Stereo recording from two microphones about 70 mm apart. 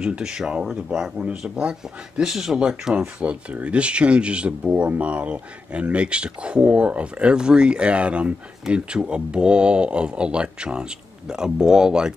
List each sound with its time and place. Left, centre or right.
0.0 s speech: centre